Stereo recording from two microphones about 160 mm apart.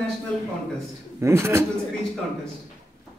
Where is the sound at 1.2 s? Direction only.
15° right (ahead or behind).